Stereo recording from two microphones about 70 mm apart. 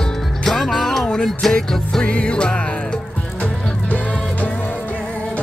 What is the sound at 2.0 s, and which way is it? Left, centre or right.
Music, centre.